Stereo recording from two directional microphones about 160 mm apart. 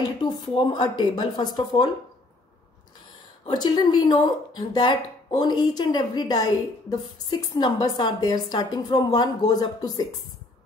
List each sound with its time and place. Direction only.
0.2 s speech: 30° left (ahead or behind)
3.4 s speech: 25° left (ahead or behind)